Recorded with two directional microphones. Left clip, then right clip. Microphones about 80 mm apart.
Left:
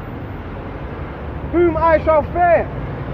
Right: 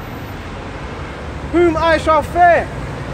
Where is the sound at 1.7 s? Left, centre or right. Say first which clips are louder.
Even; right.